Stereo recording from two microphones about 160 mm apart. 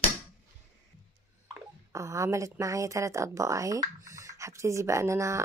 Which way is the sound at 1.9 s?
20° right (ahead or behind).